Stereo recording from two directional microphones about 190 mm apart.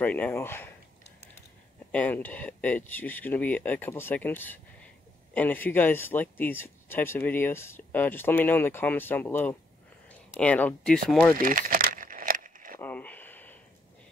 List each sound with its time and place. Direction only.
0.0 s speech: 10° left (ahead or behind)
1.9 s speech: 10° left (ahead or behind)
11.3 s keys jangling: 45° right (ahead or behind)
12.7 s a sound: 10° left (ahead or behind)